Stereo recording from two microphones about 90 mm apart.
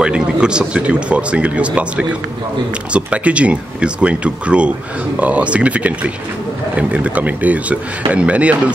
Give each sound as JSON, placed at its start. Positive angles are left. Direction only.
{"t": 0.0, "sound": "speech", "side_deg": -10}